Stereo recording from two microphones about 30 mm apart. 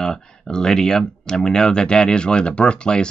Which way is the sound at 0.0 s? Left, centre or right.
Left.